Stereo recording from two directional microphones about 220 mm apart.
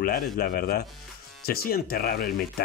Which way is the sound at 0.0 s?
40° left (ahead or behind).